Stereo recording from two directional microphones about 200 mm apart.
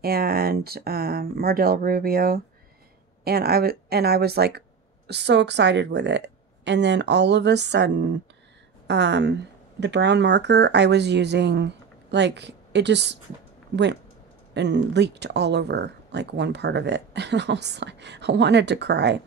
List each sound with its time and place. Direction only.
0.0 s speech: 50° right (ahead or behind)
14.5 s speech: 60° right (ahead or behind)